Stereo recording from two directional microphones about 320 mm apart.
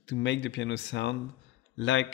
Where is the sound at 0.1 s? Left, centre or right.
Left.